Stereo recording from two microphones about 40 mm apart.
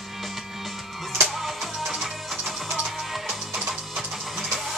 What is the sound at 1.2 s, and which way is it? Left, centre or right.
Music, centre.